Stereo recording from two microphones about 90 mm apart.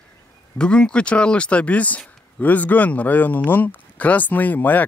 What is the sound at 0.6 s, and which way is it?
Speech, 10° left (ahead or behind).